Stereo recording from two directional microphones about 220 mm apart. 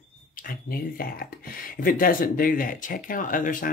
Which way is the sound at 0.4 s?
40° left (ahead or behind).